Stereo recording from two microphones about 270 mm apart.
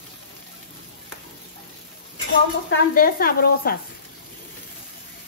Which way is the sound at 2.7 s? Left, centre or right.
Left.